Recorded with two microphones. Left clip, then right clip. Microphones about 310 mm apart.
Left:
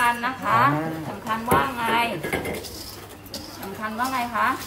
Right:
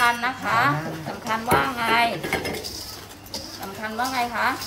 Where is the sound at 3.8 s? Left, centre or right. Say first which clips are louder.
Right 1 dB; centre.